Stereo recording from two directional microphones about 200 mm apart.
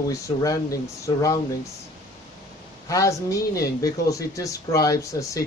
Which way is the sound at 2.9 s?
15° left (ahead or behind).